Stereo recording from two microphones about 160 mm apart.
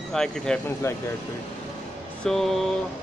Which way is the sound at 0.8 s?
15° left (ahead or behind).